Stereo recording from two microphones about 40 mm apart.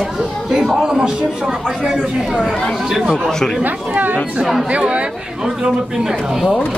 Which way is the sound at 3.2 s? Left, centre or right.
Centre.